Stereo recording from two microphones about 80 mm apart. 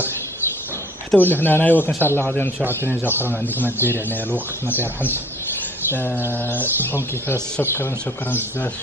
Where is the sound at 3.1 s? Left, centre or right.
Right.